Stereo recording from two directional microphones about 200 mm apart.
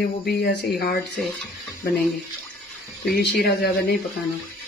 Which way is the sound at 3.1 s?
50° left (ahead or behind).